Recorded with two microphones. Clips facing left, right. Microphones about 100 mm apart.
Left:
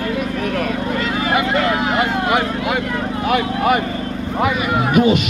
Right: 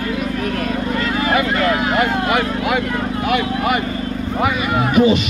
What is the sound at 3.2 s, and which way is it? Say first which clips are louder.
Speech: left 2 dB; 35° left (ahead or behind).